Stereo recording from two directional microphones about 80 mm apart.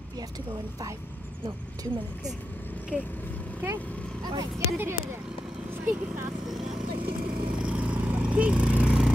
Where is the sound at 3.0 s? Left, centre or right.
Left.